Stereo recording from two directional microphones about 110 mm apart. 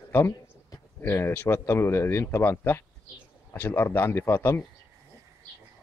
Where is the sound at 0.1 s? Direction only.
25° left (ahead or behind).